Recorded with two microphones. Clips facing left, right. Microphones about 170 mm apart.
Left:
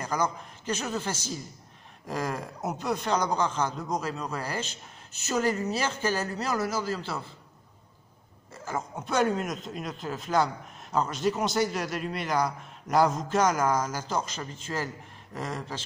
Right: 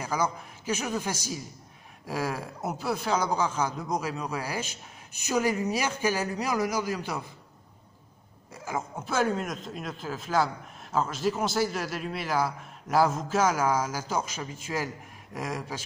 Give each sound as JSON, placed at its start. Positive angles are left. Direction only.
{"t": 0.0, "sound": "a man's voice", "side_deg": -10}
{"t": 8.5, "sound": "a man's voice", "side_deg": -10}